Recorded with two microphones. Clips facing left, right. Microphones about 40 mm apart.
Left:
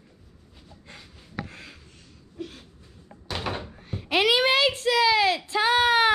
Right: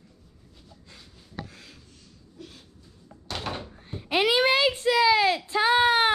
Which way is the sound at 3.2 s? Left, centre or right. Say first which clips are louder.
Left 2 dB; centre.